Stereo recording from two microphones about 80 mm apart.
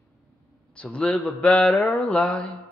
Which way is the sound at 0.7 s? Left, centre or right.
Centre.